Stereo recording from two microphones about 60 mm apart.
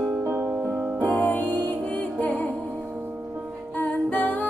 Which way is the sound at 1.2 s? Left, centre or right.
Left.